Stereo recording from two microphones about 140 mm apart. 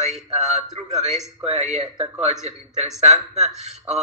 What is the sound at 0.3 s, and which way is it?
A man's voice, 50° right (ahead or behind).